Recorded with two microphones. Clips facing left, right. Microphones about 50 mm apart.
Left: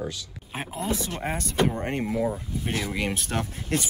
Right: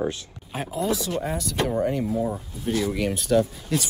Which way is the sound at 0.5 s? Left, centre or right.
Left.